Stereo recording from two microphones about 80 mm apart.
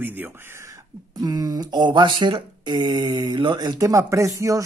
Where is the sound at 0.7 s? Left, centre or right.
Right.